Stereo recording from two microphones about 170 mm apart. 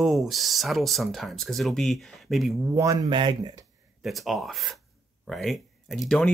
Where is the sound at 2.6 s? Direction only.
15° right (ahead or behind).